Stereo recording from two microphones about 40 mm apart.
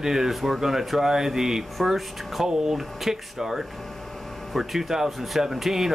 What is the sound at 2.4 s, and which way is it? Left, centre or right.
Speech, centre.